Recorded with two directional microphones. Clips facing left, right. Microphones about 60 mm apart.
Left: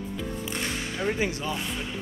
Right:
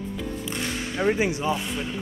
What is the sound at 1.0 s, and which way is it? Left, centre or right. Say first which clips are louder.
Speech: right 5 dB; centre.